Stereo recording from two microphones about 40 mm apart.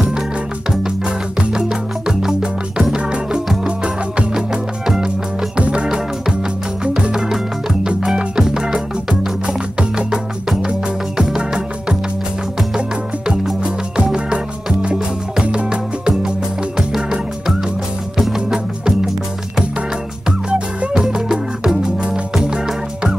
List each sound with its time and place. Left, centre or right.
1.0 s music: right
5.6 s music: right
8.4 s music: centre
13.9 s music: right
20.2 s music: right
20.9 s music: centre